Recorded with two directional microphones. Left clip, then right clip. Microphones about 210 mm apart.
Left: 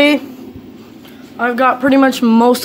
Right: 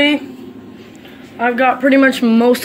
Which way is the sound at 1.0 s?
20° left (ahead or behind).